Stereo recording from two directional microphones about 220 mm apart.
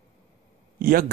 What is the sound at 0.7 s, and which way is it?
Speech, 45° right (ahead or behind).